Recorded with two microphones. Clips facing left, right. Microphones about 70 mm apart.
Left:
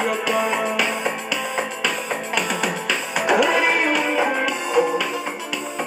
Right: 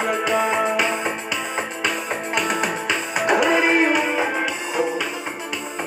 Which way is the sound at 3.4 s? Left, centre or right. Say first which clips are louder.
Right 2 dB; centre.